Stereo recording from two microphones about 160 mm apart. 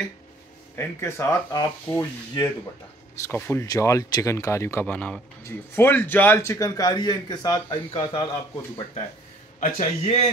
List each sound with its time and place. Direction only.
0.7 s a man's voice: 15° left (ahead or behind); by 8.3 s 35° left (ahead or behind)
9.6 s a man's voice: 45° left (ahead or behind)